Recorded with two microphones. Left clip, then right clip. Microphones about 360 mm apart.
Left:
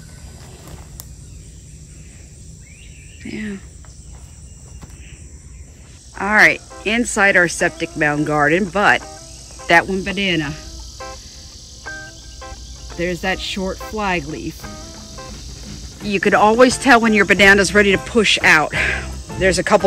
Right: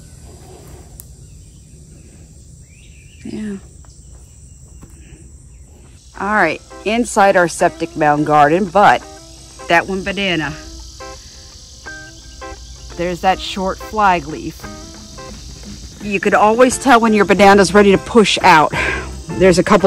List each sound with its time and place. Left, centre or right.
3.3 s speech: centre
6.1 s speech: centre
9.6 s cricket: centre
19.4 s speech: centre